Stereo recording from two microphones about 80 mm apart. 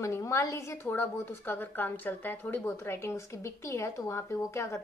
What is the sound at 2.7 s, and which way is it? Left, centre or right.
Speech, left.